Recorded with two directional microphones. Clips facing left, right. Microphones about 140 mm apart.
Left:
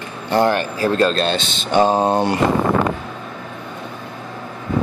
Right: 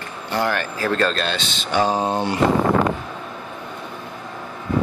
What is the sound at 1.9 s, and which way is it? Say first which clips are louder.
Speech: left 5 dB; 45° left (ahead or behind).